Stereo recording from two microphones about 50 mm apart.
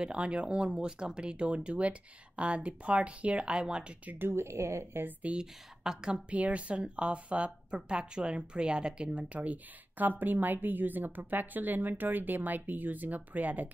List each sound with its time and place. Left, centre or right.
0.0 s speech: centre
4.2 s a woman's voice: right
5.2 s speech: centre
6.3 s speech: right